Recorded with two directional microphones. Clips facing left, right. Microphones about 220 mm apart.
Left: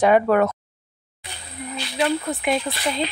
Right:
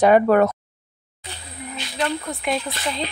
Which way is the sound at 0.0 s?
40° right (ahead or behind).